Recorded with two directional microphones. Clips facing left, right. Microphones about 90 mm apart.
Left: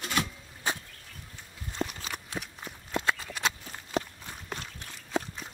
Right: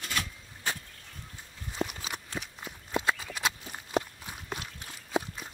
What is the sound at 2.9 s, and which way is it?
Horse, 15° right (ahead or behind).